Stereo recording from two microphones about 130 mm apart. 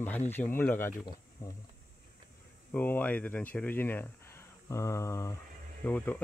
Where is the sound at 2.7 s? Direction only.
15° left (ahead or behind).